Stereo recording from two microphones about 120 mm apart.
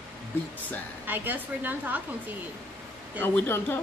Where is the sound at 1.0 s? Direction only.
15° right (ahead or behind).